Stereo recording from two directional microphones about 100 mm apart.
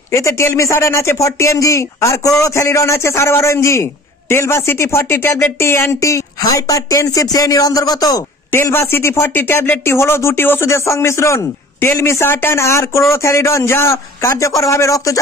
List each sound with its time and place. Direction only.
0.1 s speech: 30° left (ahead or behind)
8.5 s a man's voice: 25° left (ahead or behind)